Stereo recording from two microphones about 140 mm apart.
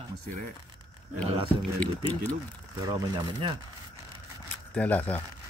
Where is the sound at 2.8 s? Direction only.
25° right (ahead or behind).